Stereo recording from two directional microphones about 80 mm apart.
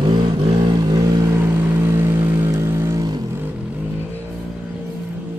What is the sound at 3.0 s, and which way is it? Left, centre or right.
Vehicle, right.